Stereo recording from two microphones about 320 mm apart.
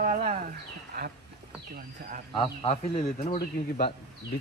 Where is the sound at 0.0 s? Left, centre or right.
Right.